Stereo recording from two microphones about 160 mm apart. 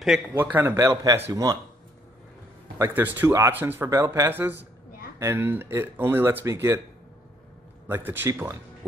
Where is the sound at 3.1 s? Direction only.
15° right (ahead or behind).